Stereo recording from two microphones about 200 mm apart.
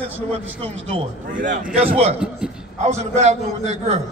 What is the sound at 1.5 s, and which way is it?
A man's voice, 30° right (ahead or behind).